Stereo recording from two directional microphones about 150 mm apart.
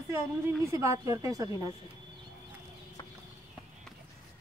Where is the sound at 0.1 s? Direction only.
20° right (ahead or behind).